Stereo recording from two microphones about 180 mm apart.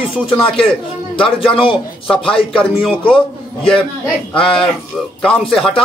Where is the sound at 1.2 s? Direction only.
30° left (ahead or behind).